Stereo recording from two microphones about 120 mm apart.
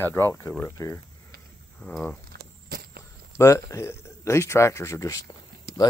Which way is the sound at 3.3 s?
25° left (ahead or behind).